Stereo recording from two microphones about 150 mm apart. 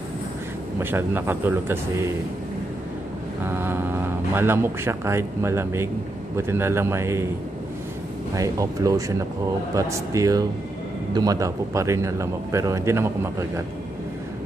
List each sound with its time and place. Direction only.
0.7 s speech: 15° right (ahead or behind)
3.4 s speech: 15° right (ahead or behind)
8.4 s a man's voice: 20° right (ahead or behind)